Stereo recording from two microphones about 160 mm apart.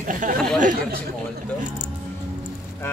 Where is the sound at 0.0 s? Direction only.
55° right (ahead or behind).